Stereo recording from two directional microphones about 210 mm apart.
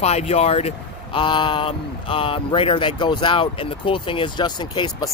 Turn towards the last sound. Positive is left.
turn(degrees=20)  # may be behind; listen again after turning